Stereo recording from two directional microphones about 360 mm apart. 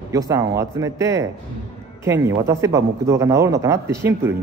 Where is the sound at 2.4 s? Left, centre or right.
Centre.